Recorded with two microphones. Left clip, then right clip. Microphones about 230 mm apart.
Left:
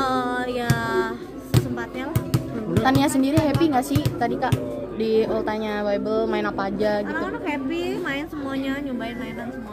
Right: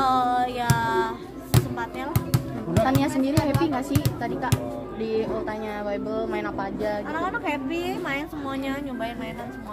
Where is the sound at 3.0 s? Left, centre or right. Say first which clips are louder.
Left 3 dB; left.